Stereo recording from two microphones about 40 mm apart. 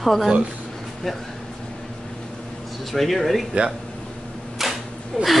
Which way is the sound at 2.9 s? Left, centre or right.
Centre.